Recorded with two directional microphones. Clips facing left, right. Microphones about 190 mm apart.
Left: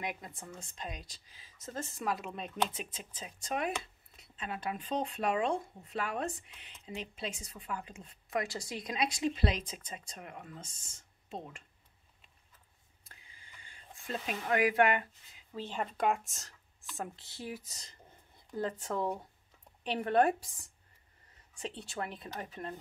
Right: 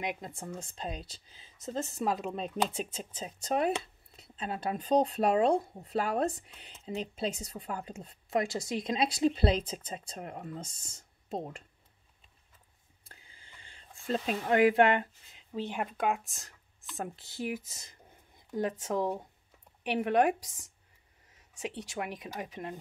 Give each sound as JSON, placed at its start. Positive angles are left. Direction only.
{"t": 0.0, "sound": "speech", "side_deg": -25}
{"t": 13.1, "sound": "a sound", "side_deg": -30}
{"t": 15.5, "sound": "speech", "side_deg": -15}
{"t": 17.3, "sound": "speech", "side_deg": -25}